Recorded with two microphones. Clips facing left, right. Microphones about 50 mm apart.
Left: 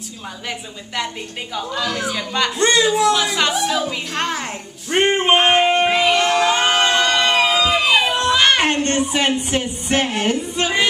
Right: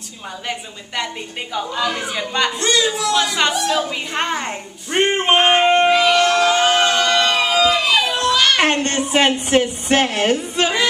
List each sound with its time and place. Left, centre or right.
0.5 s a woman's voice: centre
2.8 s speech: centre
3.3 s a woman's voice: centre
5.9 s a sound: centre
8.6 s speech: right
9.5 s music: right